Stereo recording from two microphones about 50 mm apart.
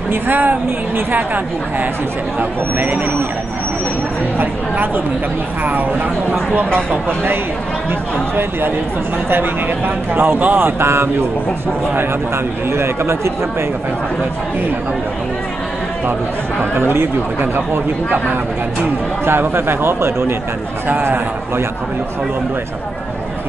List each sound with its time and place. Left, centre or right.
0.1 s a woman's voice: right
4.4 s speech: right
6.3 s a woman's voice: right
8.4 s speech: right
10.1 s speech: right
12.7 s speech: right
16.8 s speech: right
19.2 s speech: right
20.9 s a woman's voice: right